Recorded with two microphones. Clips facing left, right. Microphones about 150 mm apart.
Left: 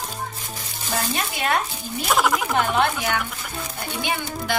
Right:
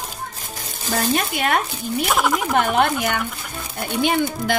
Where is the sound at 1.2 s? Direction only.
55° right (ahead or behind).